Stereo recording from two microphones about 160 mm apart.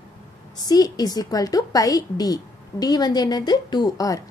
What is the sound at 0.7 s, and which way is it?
A woman's voice, 25° left (ahead or behind).